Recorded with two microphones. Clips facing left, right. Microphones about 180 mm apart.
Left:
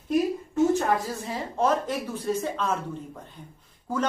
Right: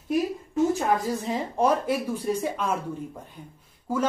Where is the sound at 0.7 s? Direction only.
15° right (ahead or behind).